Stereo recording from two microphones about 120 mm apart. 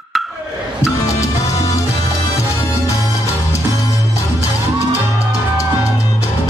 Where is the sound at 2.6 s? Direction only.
25° left (ahead or behind).